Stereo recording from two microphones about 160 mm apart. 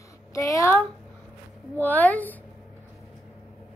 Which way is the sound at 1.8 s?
10° left (ahead or behind).